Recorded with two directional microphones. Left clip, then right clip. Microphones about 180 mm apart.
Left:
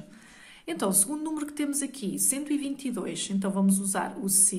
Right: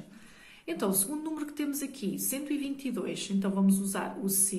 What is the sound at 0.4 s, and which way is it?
A woman's voice, 35° left (ahead or behind).